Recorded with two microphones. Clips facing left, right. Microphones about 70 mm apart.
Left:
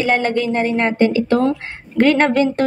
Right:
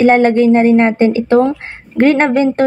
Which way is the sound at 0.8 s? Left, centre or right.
Right.